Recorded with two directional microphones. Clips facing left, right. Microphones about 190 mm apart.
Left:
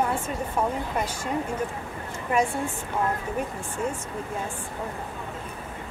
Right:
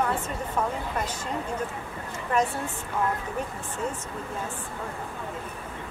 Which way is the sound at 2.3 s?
10° left (ahead or behind).